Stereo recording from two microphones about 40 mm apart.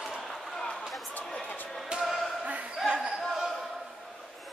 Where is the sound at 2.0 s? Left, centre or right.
Centre.